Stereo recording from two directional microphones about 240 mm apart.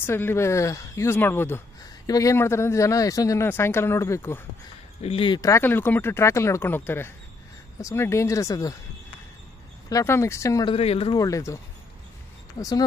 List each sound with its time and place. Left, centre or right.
0.0 s speech: centre
5.0 s speech: left
9.8 s speech: centre